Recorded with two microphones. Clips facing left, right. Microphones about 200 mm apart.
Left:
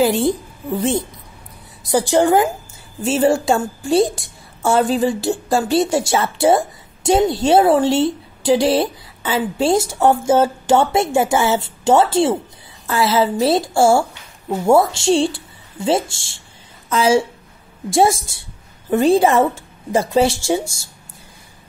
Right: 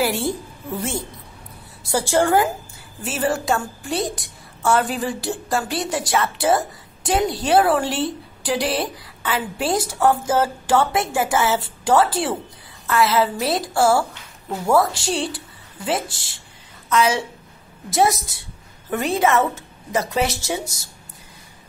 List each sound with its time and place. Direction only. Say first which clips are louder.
0.0 s a woman's voice: left 6 dB; 20° left (ahead or behind)